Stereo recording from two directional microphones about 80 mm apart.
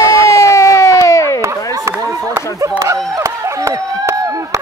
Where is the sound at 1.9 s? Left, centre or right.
Right.